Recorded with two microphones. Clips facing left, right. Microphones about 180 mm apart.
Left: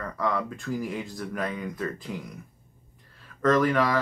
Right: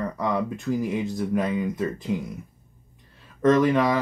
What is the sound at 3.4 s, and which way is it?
Speech, 20° right (ahead or behind).